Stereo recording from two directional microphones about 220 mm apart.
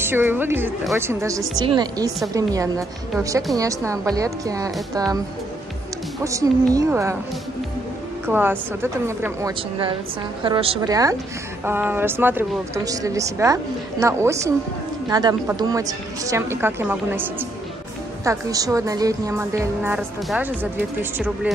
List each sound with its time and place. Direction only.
0.0 s a woman's voice: 10° right (ahead or behind)
6.2 s speech: 15° right (ahead or behind)
8.3 s speech: 10° right (ahead or behind)
10.4 s a woman's voice: 25° right (ahead or behind); by 21.5 s 5° right (ahead or behind)